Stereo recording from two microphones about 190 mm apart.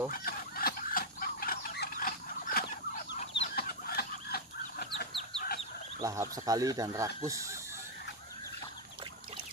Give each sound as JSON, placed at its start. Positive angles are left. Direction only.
{"t": 0.1, "sound": "chicken", "side_deg": 50}
{"t": 5.9, "sound": "speech", "side_deg": -15}